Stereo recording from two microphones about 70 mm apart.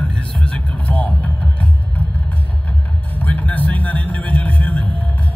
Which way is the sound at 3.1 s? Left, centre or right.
Left.